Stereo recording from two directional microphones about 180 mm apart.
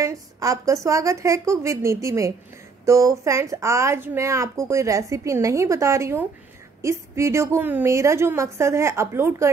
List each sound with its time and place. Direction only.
0.0 s a woman's voice: 20° right (ahead or behind)